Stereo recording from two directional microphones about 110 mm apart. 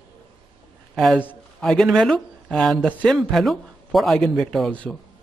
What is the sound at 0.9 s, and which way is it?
A man's voice, 5° left (ahead or behind).